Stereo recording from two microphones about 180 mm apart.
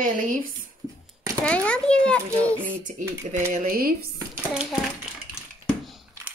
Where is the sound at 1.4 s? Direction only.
5° left (ahead or behind).